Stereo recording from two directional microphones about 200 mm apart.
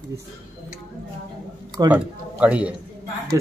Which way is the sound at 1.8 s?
5° right (ahead or behind).